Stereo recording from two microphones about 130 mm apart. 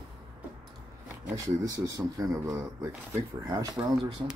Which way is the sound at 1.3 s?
25° right (ahead or behind).